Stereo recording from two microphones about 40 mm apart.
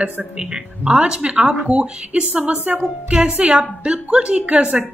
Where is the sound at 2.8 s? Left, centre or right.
Right.